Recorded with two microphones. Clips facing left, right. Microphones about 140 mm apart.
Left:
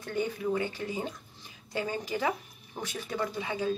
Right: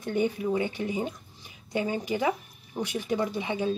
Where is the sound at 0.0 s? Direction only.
20° right (ahead or behind).